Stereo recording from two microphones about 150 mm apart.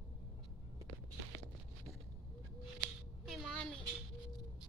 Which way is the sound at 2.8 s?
Centre (ahead or behind).